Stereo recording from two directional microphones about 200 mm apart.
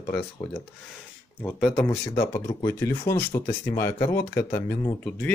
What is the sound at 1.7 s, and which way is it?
Speech, 15° left (ahead or behind).